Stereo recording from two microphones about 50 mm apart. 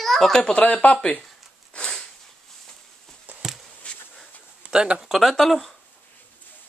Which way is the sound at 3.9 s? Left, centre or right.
Left.